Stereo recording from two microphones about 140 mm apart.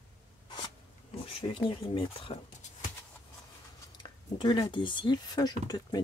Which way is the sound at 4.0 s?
35° left (ahead or behind).